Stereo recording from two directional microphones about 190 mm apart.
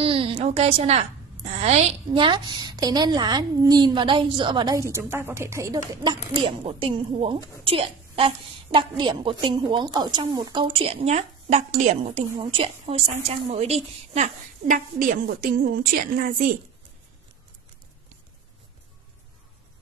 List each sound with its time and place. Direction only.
0.0 s a woman's voice: 30° right (ahead or behind)
6.3 s a woman's voice: 30° right (ahead or behind); by 16.4 s 45° right (ahead or behind)